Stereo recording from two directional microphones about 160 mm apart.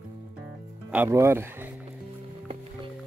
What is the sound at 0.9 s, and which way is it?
Speech, 15° right (ahead or behind).